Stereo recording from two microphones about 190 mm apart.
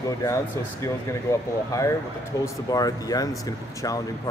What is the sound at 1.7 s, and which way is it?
Speech, 15° left (ahead or behind).